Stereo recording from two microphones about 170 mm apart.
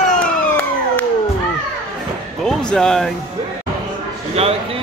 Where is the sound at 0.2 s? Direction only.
10° left (ahead or behind).